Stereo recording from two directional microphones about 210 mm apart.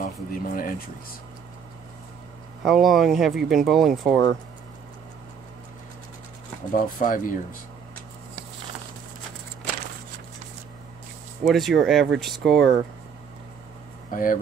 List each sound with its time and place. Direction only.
0.0 s speech: 40° left (ahead or behind)
2.6 s speech: centre (ahead or behind)
6.7 s speech: 40° left (ahead or behind)
11.4 s speech: centre (ahead or behind)
14.1 s speech: 40° left (ahead or behind)